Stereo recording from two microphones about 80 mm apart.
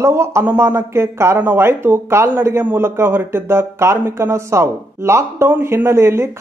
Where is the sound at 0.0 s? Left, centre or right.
Right.